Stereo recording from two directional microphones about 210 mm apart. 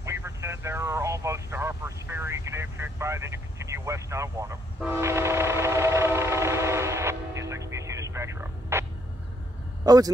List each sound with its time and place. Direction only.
0.0 s vehicle: 15° right (ahead or behind)
4.7 s train: 10° right (ahead or behind)
9.8 s speech: 15° right (ahead or behind)